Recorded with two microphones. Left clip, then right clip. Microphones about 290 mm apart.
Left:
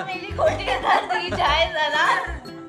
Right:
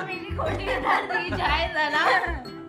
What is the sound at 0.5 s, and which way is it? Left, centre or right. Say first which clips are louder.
Music: left 4 dB; left.